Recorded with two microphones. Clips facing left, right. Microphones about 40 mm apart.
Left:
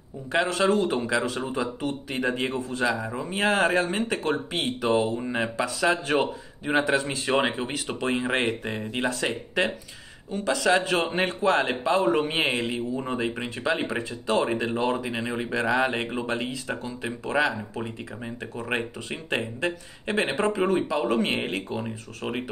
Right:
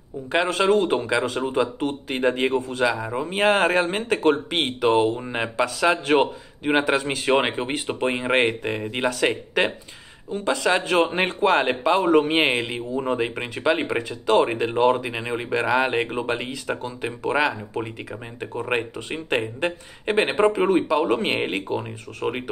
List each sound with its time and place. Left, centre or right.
0.3 s speech: right
19.2 s speech: right